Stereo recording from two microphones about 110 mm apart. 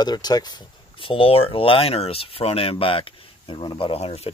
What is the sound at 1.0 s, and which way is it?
Speech, 55° left (ahead or behind).